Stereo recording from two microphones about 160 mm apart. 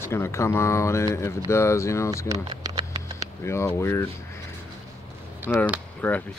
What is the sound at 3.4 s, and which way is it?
Speech, 15° left (ahead or behind).